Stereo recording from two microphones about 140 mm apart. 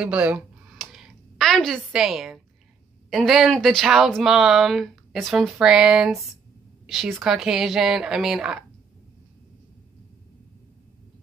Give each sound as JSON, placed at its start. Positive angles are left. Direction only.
{"t": 0.0, "sound": "speech", "side_deg": -10}
{"t": 0.7, "sound": "a sound", "side_deg": 0}
{"t": 3.1, "sound": "speech", "side_deg": 0}